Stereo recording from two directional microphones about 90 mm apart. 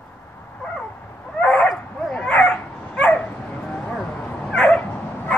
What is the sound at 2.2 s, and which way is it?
Bow-wow, 10° left (ahead or behind).